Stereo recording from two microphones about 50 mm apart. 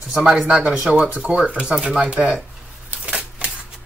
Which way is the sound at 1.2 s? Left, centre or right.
Right.